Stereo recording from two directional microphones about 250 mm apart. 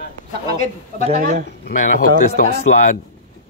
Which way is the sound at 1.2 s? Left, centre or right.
Right.